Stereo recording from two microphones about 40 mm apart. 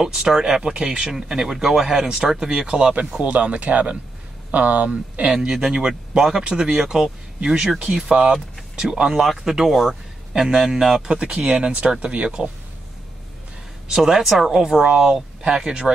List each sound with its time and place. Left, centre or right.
0.0 s speech: centre
0.5 s speech: right
3.2 s speech: right
5.5 s speech: centre
11.1 s speech: right
13.8 s speech: centre
14.6 s speech: centre